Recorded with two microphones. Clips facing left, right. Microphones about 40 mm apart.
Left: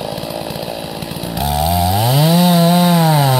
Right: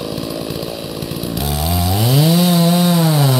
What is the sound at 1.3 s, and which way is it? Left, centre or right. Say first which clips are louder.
Chainsaw: left 6 dB; centre.